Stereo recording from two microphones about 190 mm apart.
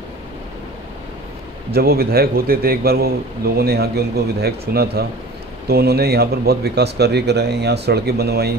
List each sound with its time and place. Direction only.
1.7 s a man's voice: 55° right (ahead or behind)